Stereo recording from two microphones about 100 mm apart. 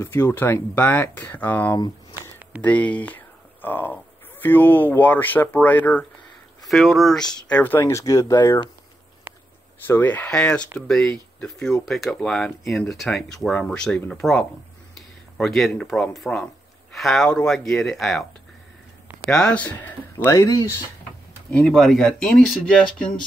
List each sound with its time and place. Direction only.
0.0 s speech: 25° left (ahead or behind)
6.7 s speech: centre (ahead or behind); by 7.8 s 15° left (ahead or behind)
7.8 s speech: 35° left (ahead or behind)
9.3 s a sound: 20° right (ahead or behind)
9.8 s speech: 20° left (ahead or behind)
19.2 s speech: 10° left (ahead or behind)
20.2 s speech: 35° left (ahead or behind)
21.5 s speech: 10° left (ahead or behind)